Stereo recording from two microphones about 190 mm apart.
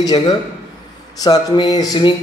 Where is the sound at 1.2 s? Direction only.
20° left (ahead or behind).